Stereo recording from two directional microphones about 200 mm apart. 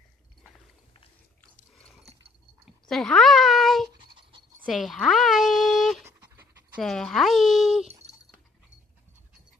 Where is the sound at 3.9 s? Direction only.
25° right (ahead or behind).